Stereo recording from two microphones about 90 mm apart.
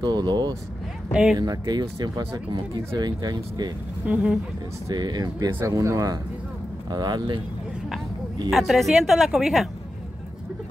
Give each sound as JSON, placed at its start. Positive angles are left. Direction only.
{"t": 0.0, "sound": "speech", "side_deg": -50}
{"t": 4.0, "sound": "speech", "side_deg": -15}
{"t": 4.9, "sound": "speech", "side_deg": -50}
{"t": 5.7, "sound": "speech", "side_deg": -35}
{"t": 6.9, "sound": "speech", "side_deg": -50}
{"t": 8.5, "sound": "speech", "side_deg": 0}